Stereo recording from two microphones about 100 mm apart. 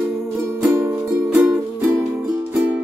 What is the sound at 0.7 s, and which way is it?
Music, 25° right (ahead or behind).